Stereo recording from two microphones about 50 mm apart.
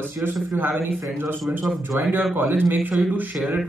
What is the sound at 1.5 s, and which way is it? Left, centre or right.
A man's voice, right.